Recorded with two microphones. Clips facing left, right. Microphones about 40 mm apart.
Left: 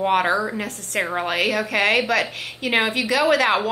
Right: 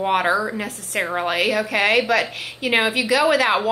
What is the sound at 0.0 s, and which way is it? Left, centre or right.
A woman's voice, centre.